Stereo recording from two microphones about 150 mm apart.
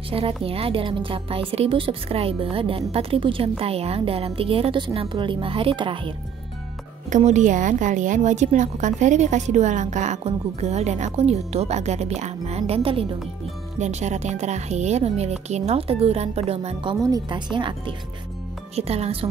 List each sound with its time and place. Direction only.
0.1 s a woman's voice: 40° right (ahead or behind)
7.1 s a woman's voice: 55° right (ahead or behind)
13.7 s a woman's voice: 50° right (ahead or behind)
17.0 s a woman's voice: 25° right (ahead or behind)
18.8 s a woman's voice: 45° right (ahead or behind)